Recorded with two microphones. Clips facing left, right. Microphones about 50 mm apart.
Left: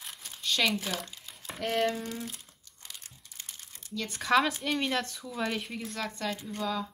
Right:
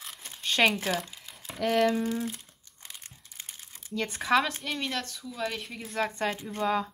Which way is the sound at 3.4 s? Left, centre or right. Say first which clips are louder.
Right 1 dB; centre.